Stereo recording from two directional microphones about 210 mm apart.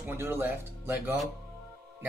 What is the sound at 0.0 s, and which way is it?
Speech, 10° right (ahead or behind).